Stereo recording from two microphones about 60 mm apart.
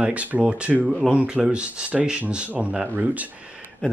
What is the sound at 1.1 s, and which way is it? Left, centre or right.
Speech, centre.